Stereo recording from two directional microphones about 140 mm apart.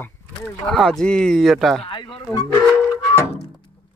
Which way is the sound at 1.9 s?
40° left (ahead or behind).